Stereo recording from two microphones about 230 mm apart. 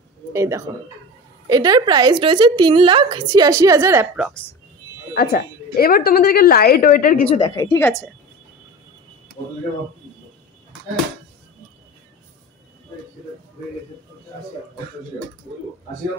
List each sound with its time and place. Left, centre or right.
0.3 s a woman's voice: centre
5.1 s a woman's voice: left
7.2 s a woman's voice: left